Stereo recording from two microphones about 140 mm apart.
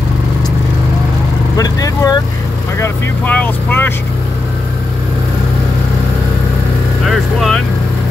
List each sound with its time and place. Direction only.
1.6 s speech: 25° left (ahead or behind)
2.8 s speech: 10° left (ahead or behind)
7.1 s speech: centre (ahead or behind)